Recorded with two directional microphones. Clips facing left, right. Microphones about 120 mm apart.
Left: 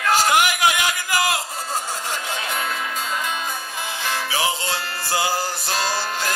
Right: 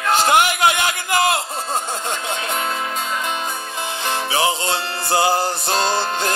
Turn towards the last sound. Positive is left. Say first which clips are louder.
# right 4 dB
turn(degrees=-25)  # may be behind; listen again after turning